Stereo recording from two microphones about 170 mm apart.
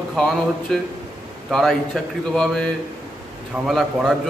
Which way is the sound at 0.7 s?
Centre (ahead or behind).